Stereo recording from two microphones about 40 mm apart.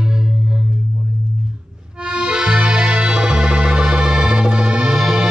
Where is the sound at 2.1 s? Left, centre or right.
Right.